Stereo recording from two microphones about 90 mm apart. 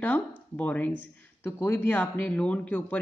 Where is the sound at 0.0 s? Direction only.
15° left (ahead or behind).